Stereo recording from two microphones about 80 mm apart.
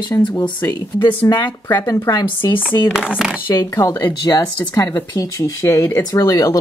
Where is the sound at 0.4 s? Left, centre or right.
Left.